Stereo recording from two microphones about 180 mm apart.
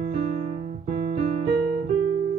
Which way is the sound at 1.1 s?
35° right (ahead or behind).